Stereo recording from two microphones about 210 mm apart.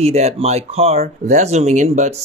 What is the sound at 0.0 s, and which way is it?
Speech, 30° right (ahead or behind).